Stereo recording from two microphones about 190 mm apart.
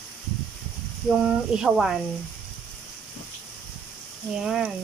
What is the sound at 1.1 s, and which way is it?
Speech, 5° right (ahead or behind).